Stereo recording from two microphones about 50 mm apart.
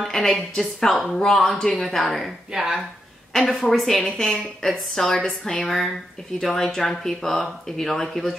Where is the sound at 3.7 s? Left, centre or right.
Centre.